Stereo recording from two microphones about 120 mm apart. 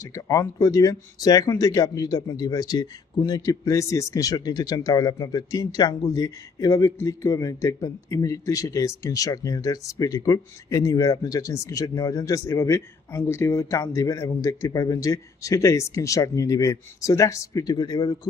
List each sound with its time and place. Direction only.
0.1 s speech: 30° left (ahead or behind)